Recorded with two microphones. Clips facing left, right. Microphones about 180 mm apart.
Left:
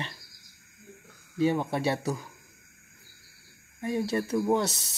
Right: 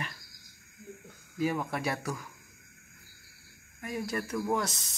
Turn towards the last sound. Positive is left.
turn(degrees=30)  # may be behind; listen again after turning